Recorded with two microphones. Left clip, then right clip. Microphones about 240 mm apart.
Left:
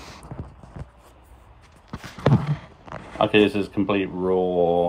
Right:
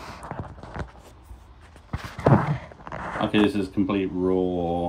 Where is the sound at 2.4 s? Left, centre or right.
Left.